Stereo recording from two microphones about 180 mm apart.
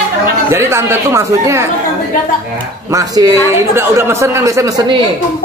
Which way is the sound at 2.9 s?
20° right (ahead or behind).